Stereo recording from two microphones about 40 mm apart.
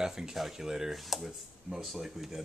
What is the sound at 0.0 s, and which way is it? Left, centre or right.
Speech, centre.